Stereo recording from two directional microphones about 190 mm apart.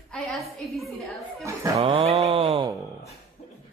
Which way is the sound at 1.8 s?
30° right (ahead or behind).